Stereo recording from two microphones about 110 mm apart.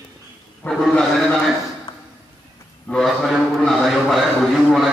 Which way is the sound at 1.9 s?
50° left (ahead or behind).